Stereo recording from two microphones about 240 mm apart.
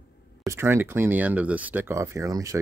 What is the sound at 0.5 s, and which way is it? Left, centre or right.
Speech, centre.